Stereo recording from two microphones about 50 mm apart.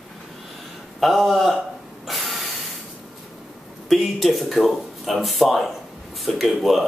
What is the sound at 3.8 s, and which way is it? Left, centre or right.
Speech, centre.